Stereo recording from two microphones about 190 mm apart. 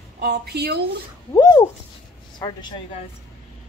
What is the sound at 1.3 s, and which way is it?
A woman's voice, 20° left (ahead or behind).